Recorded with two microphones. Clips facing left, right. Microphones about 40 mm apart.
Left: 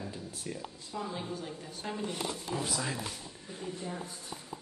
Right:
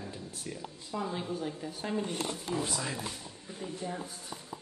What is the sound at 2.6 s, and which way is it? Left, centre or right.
Speech, centre.